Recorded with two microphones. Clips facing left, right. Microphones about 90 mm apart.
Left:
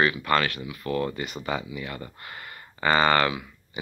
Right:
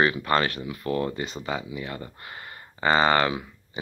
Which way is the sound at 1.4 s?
15° right (ahead or behind).